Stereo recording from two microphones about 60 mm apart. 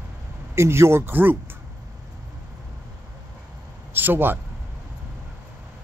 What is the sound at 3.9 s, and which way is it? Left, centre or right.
Speech, right.